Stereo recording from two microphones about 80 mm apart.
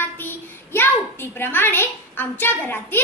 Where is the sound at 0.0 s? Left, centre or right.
Left.